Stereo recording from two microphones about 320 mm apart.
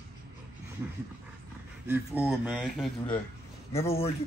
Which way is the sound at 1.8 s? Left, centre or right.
Centre.